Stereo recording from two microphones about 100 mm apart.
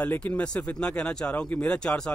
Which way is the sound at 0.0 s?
15° left (ahead or behind).